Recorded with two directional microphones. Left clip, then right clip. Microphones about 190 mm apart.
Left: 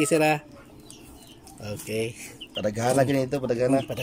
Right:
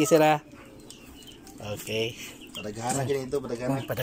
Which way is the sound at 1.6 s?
20° left (ahead or behind).